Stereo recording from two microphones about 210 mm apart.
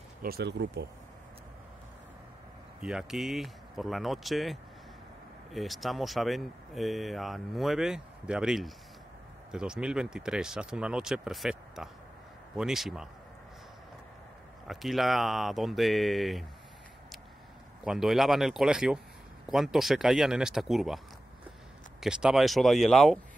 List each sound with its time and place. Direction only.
0.2 s speech: 50° right (ahead or behind)
2.8 s speech: 5° right (ahead or behind)
14.7 s speech: centre (ahead or behind)
17.8 s speech: centre (ahead or behind)
22.0 s speech: 5° right (ahead or behind)